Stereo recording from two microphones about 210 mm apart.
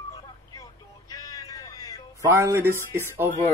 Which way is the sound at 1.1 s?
15° left (ahead or behind).